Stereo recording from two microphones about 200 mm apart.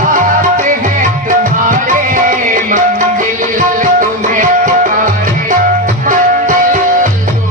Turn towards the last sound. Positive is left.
turn(degrees=-40)  # may be behind; listen again after turning